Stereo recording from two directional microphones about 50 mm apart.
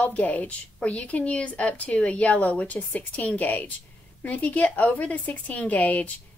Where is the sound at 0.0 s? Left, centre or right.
Left.